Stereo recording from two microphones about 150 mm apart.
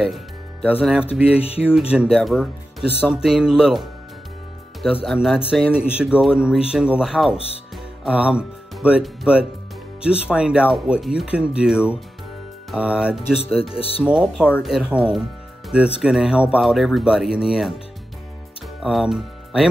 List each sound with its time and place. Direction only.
0.0 s music: centre (ahead or behind)
1.1 s speech: 10° right (ahead or behind)
5.0 s speech: centre (ahead or behind)
7.3 s speech: 40° left (ahead or behind)
7.7 s speech: 5° right (ahead or behind)
13.7 s speech: 40° left (ahead or behind)
14.0 s speech: 5° right (ahead or behind)
18.8 s speech: centre (ahead or behind)